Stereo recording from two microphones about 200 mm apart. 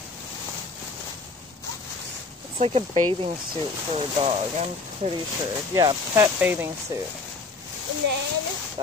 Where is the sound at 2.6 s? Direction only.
30° right (ahead or behind).